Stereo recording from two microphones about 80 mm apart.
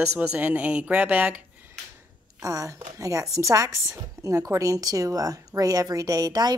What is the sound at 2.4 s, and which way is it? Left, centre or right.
A woman's voice, right.